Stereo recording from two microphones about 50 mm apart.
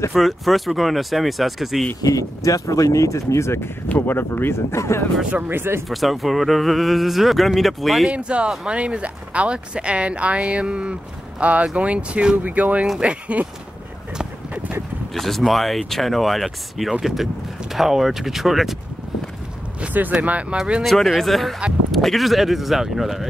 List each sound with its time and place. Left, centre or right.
0.1 s speech: centre
2.4 s speech: left
4.0 s speech: left
5.5 s speech: right
5.9 s speech: centre
8.1 s speech: right
15.1 s speech: centre
19.9 s speech: right
20.8 s speech: centre